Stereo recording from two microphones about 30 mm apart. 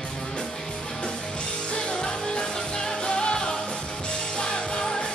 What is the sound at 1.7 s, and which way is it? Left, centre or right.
Music, left.